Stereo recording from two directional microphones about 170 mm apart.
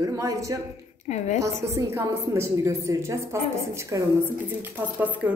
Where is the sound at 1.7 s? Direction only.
15° right (ahead or behind).